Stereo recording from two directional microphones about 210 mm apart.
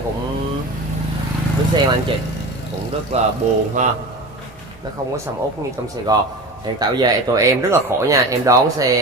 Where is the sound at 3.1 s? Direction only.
30° right (ahead or behind).